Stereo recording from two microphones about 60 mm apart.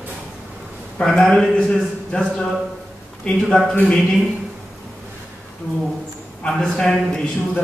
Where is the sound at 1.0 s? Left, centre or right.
Centre.